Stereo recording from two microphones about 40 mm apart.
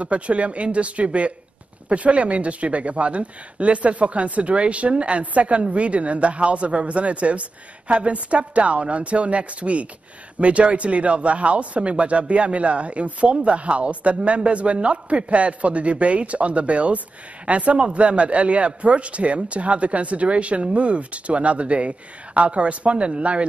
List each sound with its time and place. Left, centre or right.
0.0 s speech: right